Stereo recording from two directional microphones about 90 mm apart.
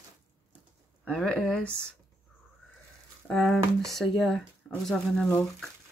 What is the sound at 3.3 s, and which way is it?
Speech, 5° left (ahead or behind).